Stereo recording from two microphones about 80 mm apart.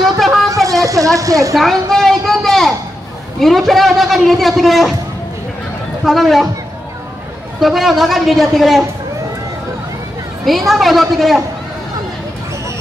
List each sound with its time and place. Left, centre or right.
0.7 s a sound: right
1.5 s a sound: centre
3.3 s a man's voice: centre
6.0 s a man's voice: centre
7.6 s a man's voice: centre
10.4 s a man's voice: centre